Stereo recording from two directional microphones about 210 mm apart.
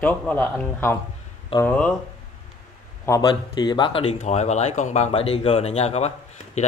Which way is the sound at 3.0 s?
20° left (ahead or behind).